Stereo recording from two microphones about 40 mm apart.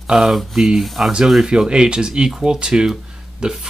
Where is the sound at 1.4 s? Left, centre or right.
Right.